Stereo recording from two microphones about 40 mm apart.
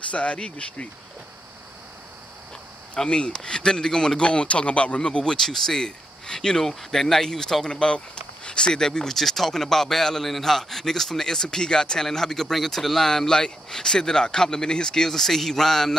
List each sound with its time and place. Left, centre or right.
0.1 s speech: left
3.0 s speech: left
4.2 s speech: left; by 16.0 s centre